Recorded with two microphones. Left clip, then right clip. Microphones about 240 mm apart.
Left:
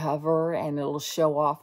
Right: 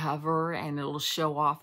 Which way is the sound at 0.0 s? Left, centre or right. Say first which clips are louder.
Left 4 dB; right.